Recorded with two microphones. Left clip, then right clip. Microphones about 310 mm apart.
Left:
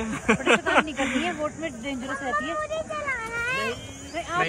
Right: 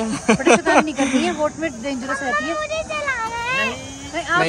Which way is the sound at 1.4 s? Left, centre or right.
Right.